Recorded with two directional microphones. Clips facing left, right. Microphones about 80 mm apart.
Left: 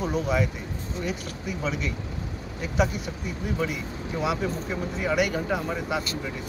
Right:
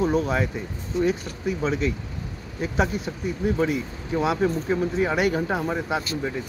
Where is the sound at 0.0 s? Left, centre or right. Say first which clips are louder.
Right 3 dB; right.